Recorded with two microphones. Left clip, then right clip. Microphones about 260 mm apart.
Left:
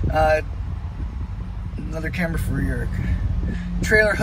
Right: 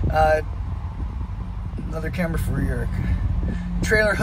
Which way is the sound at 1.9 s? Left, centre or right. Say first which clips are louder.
Left 1 dB; centre.